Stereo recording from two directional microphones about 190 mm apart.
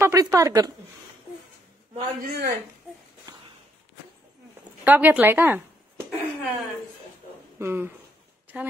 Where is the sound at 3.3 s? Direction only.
20° right (ahead or behind).